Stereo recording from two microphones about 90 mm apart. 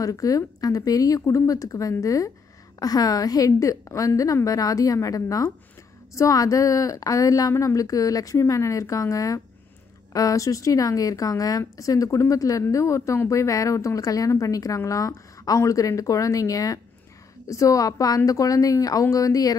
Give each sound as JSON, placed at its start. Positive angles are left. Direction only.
{"t": 0.0, "sound": "a woman's voice", "side_deg": 40}